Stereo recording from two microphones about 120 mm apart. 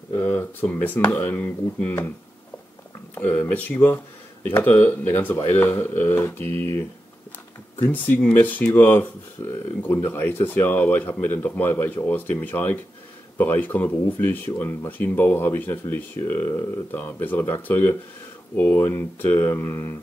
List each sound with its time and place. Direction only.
0.1 s speech: 20° left (ahead or behind)
3.2 s speech: 15° left (ahead or behind)
6.4 s speech: 55° right (ahead or behind)
7.8 s speech: 15° left (ahead or behind)